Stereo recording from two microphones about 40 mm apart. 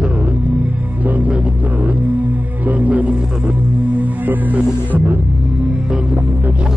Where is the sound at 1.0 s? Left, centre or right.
Right.